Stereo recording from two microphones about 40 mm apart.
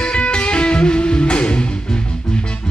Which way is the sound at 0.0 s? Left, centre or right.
Left.